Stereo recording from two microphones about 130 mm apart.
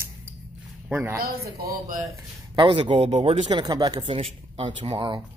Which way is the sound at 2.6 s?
40° right (ahead or behind).